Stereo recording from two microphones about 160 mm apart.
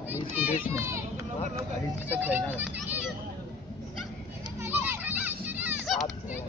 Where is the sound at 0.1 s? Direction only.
15° right (ahead or behind).